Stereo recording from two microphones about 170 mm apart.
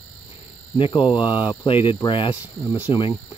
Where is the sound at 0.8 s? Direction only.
30° left (ahead or behind).